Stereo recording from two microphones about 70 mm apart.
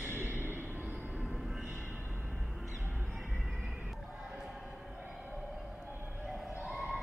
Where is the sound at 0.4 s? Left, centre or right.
Left.